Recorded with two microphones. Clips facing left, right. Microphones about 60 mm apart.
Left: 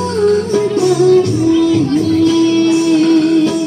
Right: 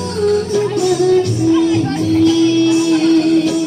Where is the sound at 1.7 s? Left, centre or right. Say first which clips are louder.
Left 3 dB; right.